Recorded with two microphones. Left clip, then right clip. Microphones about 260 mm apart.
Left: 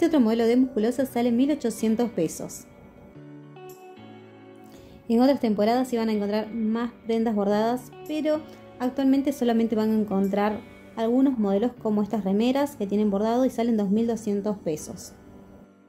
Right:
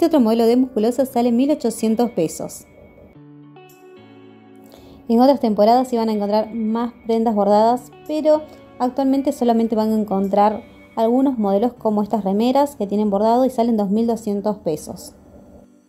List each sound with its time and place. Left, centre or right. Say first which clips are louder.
0.0 s a woman's voice: right 6 dB; centre
5.0 s a woman's voice: right 7 dB; centre